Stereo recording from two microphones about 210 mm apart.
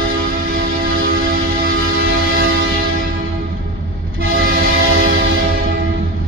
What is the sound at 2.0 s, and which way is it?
Train, 45° right (ahead or behind).